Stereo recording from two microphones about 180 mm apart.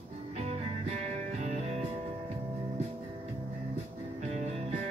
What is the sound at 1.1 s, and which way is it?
Music, 40° right (ahead or behind).